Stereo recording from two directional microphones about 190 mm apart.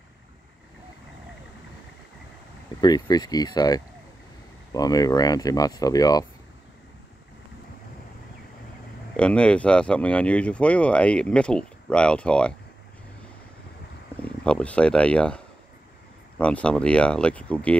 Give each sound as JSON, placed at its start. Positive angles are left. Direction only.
{"t": 2.8, "sound": "speech", "side_deg": 20}
{"t": 9.1, "sound": "speech", "side_deg": 5}
{"t": 14.4, "sound": "speech", "side_deg": 5}